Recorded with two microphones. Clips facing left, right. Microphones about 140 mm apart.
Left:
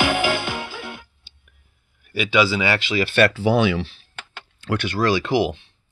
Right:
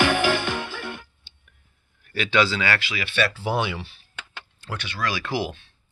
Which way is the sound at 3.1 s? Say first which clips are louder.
Left 6 dB; 60° left (ahead or behind).